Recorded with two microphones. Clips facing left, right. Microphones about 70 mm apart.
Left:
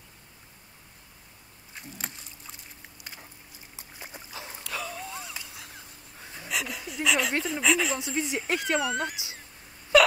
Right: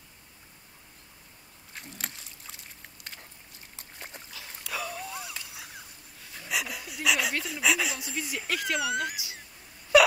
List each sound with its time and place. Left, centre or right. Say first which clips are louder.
1.7 s a sound: even; centre
3.7 s boat: left 1 dB; centre
4.6 s a sound: right 1 dB; centre
6.2 s dog: left 2 dB; left
6.5 s dog: even; centre
7.3 s speech: left 4 dB; left
7.6 s speech: left 1 dB; centre
8.0 s speech: left 5 dB; left
8.8 s speech: even; left
9.9 s wail: even; centre